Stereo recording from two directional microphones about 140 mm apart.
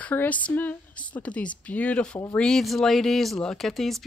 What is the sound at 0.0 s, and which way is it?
A woman's voice, 10° left (ahead or behind).